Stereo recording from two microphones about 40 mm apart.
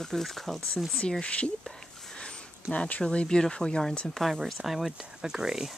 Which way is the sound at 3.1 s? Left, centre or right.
Centre.